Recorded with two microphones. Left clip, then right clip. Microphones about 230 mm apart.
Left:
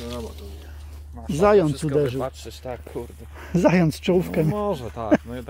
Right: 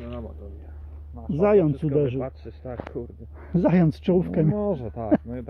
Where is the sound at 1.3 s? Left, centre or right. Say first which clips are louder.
Left 2 dB; centre.